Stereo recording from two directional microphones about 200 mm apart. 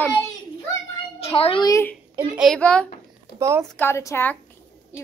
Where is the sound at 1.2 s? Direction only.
30° left (ahead or behind).